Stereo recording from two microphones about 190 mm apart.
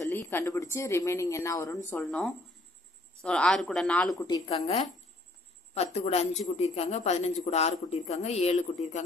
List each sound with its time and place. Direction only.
0.0 s a woman's voice: 15° left (ahead or behind)
4.3 s a woman's voice: 25° left (ahead or behind)